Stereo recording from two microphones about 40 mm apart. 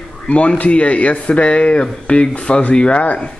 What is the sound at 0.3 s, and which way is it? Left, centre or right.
Speech, left.